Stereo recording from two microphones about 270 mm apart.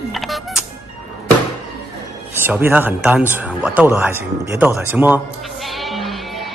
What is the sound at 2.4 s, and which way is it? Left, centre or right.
Speech, centre.